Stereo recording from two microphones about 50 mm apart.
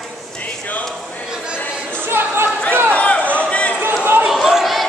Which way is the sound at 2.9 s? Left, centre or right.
Left.